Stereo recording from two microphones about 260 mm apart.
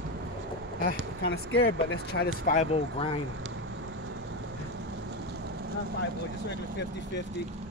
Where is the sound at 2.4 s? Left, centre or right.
Left.